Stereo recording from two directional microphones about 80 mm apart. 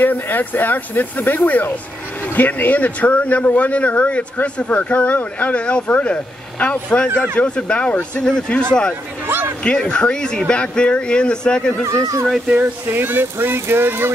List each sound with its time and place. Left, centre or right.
0.0 s speech: left
11.9 s speech: right
12.8 s speech: right